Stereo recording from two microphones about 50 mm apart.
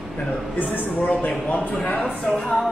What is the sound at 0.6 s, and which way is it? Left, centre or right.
A man's voice, left.